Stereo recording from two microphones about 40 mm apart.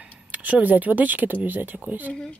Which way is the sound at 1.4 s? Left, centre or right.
Right.